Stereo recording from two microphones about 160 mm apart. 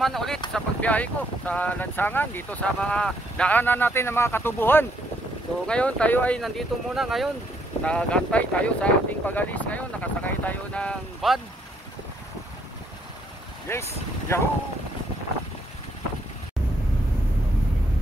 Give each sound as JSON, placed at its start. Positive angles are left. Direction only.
{"t": 0.0, "sound": "speech", "side_deg": 0}
{"t": 13.7, "sound": "speech", "side_deg": 15}